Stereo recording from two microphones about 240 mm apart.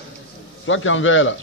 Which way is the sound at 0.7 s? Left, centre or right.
Left.